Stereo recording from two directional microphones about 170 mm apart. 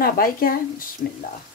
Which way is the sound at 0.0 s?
60° left (ahead or behind).